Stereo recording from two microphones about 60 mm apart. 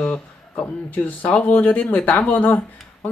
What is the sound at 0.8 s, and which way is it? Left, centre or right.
Speech, left.